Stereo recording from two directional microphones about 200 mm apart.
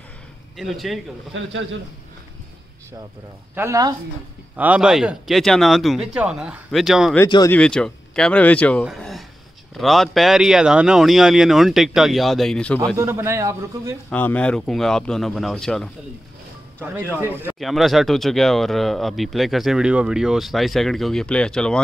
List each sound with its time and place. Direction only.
0.6 s speech: centre (ahead or behind)
1.3 s a man's voice: 70° right (ahead or behind)
3.5 s a man's voice: 15° right (ahead or behind)
7.2 s speech: 20° left (ahead or behind)
7.5 s speech: 5° left (ahead or behind)
12.9 s a man's voice: 10° right (ahead or behind)
14.1 s speech: 5° left (ahead or behind)
16.8 s a man's voice: 10° right (ahead or behind)
17.6 s speech: centre (ahead or behind)